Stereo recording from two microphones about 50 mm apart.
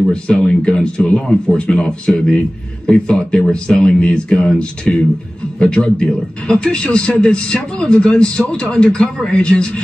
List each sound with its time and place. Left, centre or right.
0.1 s speech: centre